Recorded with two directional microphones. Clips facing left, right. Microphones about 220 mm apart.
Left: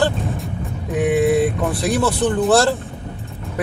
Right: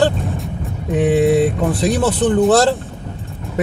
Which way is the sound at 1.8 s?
20° right (ahead or behind).